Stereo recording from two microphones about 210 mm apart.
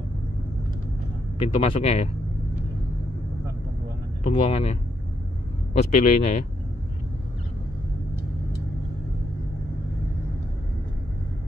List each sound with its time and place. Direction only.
1.4 s speech: 25° left (ahead or behind)
4.2 s speech: 25° left (ahead or behind)
5.8 s speech: 35° left (ahead or behind)